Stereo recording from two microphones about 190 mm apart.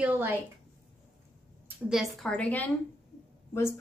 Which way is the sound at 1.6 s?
5° right (ahead or behind).